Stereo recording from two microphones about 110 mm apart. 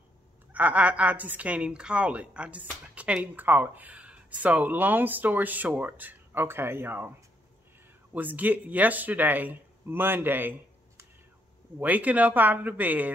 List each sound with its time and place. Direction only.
0.5 s a woman's voice: 15° right (ahead or behind)
8.1 s a woman's voice: 15° right (ahead or behind)
11.8 s a woman's voice: 15° right (ahead or behind)